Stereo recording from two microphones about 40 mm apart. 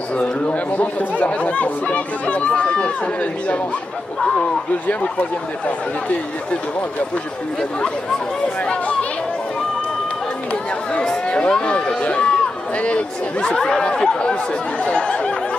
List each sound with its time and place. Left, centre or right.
1.2 s speech: left
11.2 s a sound: left
11.5 s a man's voice: left